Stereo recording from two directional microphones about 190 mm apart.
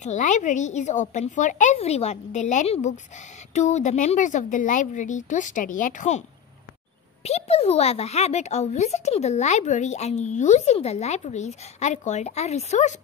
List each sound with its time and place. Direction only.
0.0 s a child's voice: 40° left (ahead or behind)
7.2 s a child's voice: 35° left (ahead or behind)